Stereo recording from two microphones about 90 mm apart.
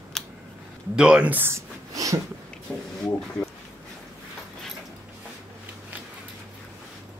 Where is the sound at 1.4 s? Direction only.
35° right (ahead or behind).